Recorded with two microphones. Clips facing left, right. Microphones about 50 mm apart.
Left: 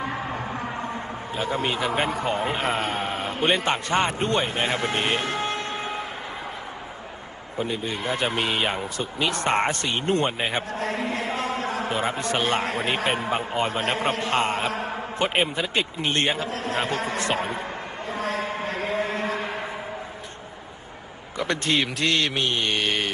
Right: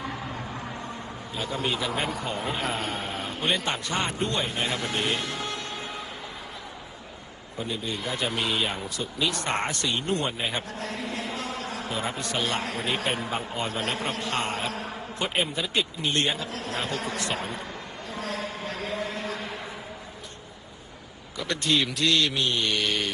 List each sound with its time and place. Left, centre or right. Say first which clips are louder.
0.0 s a man's voice: left 5 dB; left
7.5 s speech: left 4 dB; left
18.1 s a sound: left 5 dB; left
21.4 s speech: left 2 dB; left